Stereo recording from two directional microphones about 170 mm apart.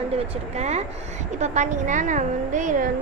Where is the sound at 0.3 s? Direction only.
40° right (ahead or behind).